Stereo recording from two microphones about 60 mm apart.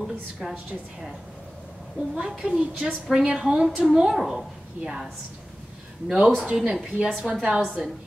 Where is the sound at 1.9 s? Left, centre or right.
Centre.